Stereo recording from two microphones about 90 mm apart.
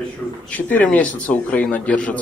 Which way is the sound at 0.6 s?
20° left (ahead or behind).